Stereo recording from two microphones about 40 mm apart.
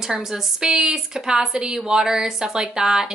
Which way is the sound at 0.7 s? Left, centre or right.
Centre.